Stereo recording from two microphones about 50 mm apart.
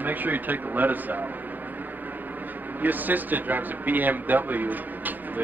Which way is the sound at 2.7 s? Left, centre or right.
Right.